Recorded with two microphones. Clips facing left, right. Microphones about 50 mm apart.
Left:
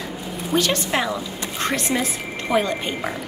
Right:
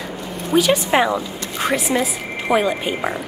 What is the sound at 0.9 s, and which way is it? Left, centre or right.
Speech, centre.